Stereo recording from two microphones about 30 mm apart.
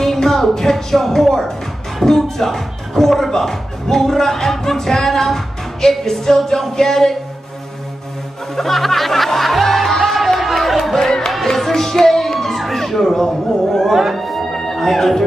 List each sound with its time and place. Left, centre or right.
0.0 s music: centre
2.0 s speech: centre
8.5 s music: centre
10.8 s music: centre
11.4 s a sound: centre
14.1 s music: centre